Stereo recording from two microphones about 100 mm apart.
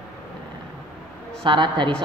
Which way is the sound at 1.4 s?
55° right (ahead or behind).